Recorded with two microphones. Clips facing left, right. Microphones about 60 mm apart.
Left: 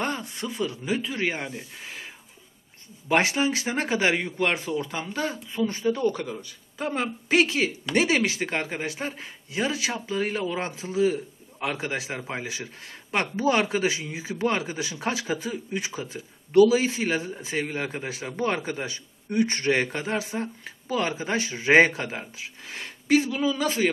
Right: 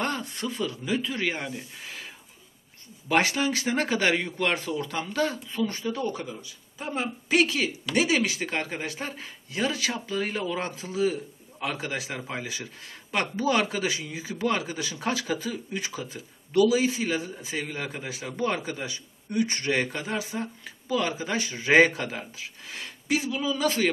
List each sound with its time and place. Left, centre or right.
0.0 s a sound: centre
0.7 s speech: centre
3.1 s speech: left
6.0 s speech: left
7.2 s speech: left